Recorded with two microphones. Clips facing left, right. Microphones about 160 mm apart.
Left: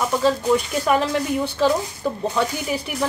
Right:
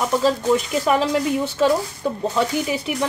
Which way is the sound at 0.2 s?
Centre (ahead or behind).